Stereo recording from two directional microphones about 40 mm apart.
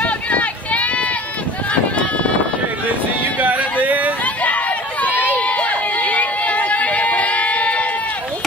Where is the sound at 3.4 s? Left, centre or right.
Right.